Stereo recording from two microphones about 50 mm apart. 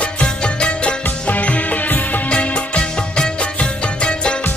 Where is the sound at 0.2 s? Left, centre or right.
Left.